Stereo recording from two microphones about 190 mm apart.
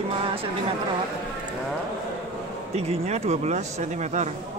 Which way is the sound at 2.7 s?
35° right (ahead or behind).